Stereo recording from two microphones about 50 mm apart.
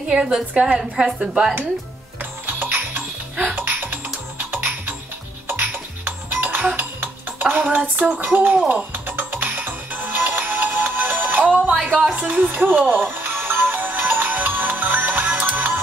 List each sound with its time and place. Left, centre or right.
0.1 s a woman's voice: centre
2.4 s music: right
6.8 s dishes: right
8.0 s music: right